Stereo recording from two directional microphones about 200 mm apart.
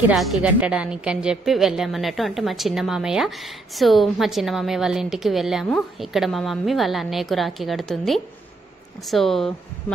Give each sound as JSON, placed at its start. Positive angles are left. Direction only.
{"t": 0.1, "sound": "a woman's voice", "side_deg": 0}